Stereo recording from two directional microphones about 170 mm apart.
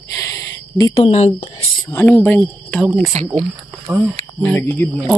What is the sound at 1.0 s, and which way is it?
Speech, 40° left (ahead or behind).